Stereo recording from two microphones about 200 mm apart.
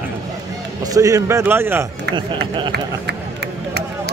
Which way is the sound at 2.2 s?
25° right (ahead or behind).